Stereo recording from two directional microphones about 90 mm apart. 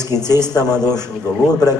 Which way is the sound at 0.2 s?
45° left (ahead or behind).